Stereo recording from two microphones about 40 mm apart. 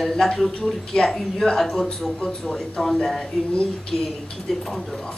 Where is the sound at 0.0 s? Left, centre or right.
Centre.